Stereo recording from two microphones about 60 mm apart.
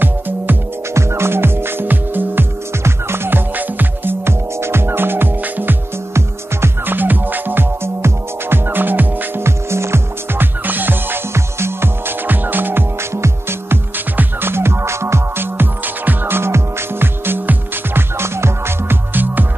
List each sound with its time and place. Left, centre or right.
0.9 s music: right
9.4 s music: right
11.3 s music: right
13.1 s music: right